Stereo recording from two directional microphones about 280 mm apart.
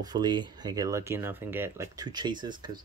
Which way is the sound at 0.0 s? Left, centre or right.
Centre.